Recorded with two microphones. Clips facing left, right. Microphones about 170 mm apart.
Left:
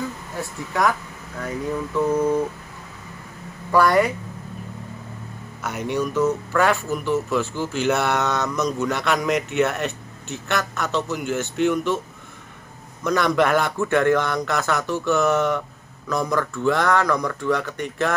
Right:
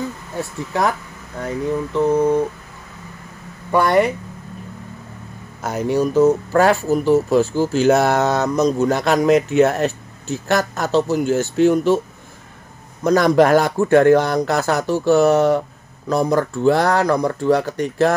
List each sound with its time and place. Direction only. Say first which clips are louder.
1.4 s speech: right 4 dB; 25° right (ahead or behind)
3.7 s speech: right 2 dB; 25° right (ahead or behind)
5.6 s speech: right 6 dB; 35° right (ahead or behind)
13.0 s speech: right 6 dB; 35° right (ahead or behind)